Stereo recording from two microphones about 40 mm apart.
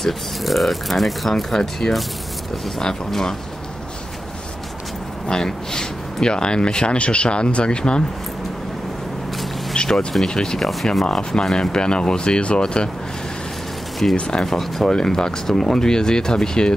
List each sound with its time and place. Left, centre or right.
0.0 s speech: centre
5.3 s speech: centre
9.8 s speech: left
10.6 s speech: centre
11.1 s speech: left
14.1 s speech: left
14.4 s speech: centre